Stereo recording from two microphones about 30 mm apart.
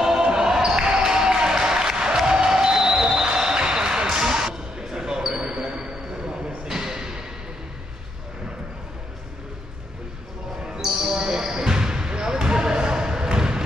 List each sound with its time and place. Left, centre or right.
0.0 s basketball bounce: right
2.7 s a sound: centre
3.3 s basketball bounce: right
10.8 s basketball bounce: centre